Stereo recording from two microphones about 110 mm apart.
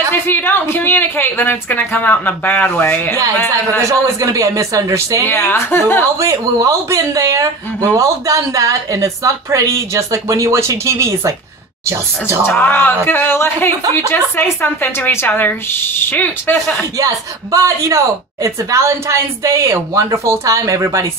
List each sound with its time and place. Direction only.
0.3 s a woman's voice: 20° left (ahead or behind)
3.8 s a woman's voice: 30° right (ahead or behind)
5.2 s a woman's voice: 20° left (ahead or behind)
6.1 s a woman's voice: 30° right (ahead or behind)
12.4 s a woman's voice: 20° left (ahead or behind)
17.0 s a woman's voice: 30° right (ahead or behind)